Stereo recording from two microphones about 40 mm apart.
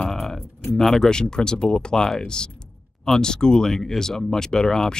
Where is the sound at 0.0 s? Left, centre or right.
Centre.